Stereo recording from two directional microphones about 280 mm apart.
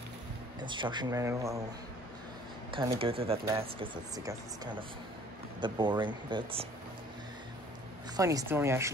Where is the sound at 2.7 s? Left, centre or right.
Centre.